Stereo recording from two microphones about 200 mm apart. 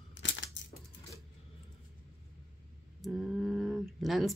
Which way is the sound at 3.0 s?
Centre (ahead or behind).